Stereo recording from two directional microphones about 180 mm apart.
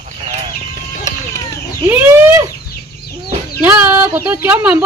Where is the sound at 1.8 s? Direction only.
10° right (ahead or behind).